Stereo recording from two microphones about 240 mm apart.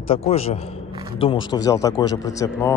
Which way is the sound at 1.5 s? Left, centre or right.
Centre.